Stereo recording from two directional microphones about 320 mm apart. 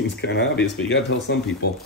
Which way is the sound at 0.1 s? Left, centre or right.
Left.